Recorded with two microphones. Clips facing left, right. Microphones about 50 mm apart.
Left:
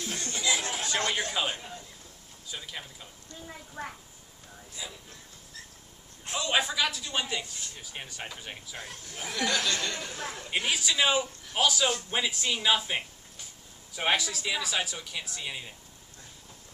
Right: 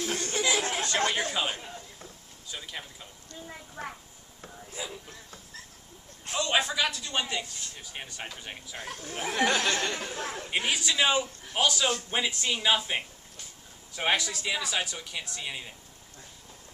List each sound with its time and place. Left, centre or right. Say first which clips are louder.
0.0 s chatter: right 3 dB; right
0.9 s speech: right 1 dB; centre
1.3 s a man's voice: even; centre
4.8 s speech: right 4 dB; right
6.3 s a man's voice: right 1 dB; centre
8.8 s a man's voice: right 8 dB; right; by 10.7 s centre
10.7 s a man's voice: even; centre